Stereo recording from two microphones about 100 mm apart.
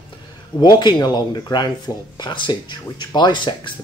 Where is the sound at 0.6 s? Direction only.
45° left (ahead or behind).